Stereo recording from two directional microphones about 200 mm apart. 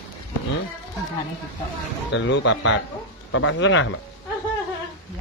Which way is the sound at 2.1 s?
60° left (ahead or behind).